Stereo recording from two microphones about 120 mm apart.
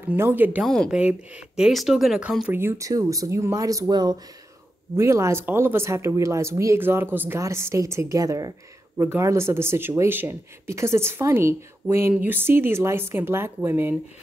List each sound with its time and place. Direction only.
0.1 s speech: 15° right (ahead or behind)
2.5 s speech: 20° right (ahead or behind)
4.9 s speech: 25° right (ahead or behind)